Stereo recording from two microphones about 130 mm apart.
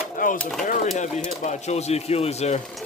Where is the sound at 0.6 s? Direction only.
65° left (ahead or behind).